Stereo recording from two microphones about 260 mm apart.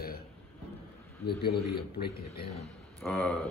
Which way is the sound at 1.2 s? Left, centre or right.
Left.